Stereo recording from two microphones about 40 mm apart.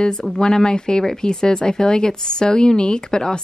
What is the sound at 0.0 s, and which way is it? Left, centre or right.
Speech, centre.